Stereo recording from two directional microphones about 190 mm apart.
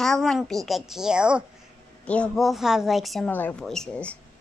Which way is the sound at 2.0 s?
5° left (ahead or behind).